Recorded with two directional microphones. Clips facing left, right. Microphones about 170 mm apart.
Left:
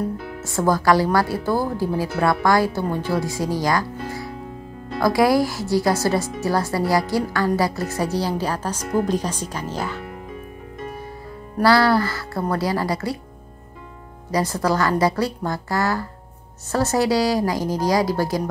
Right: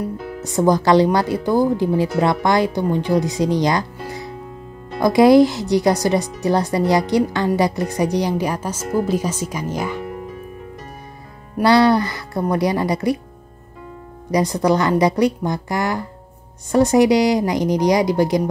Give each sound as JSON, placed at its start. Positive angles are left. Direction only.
{"t": 0.5, "sound": "speech", "side_deg": -20}
{"t": 4.0, "sound": "music", "side_deg": -20}
{"t": 5.0, "sound": "a woman's voice", "side_deg": -20}
{"t": 11.5, "sound": "speech", "side_deg": -20}
{"t": 14.3, "sound": "speech", "side_deg": -20}